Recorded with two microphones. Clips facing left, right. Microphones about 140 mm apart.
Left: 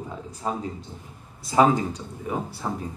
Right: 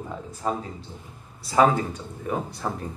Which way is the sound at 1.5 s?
20° left (ahead or behind).